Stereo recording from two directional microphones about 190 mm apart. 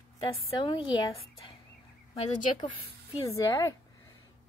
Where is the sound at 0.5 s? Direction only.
25° left (ahead or behind).